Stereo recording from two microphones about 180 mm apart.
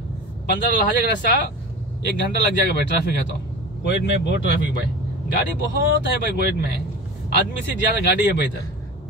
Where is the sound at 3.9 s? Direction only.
70° left (ahead or behind).